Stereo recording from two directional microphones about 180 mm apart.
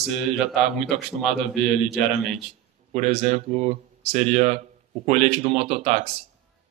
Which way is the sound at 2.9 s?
40° right (ahead or behind).